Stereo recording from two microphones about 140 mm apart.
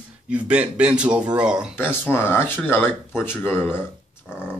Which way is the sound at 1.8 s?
15° left (ahead or behind).